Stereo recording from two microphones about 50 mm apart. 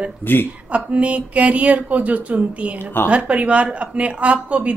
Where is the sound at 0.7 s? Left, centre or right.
Right.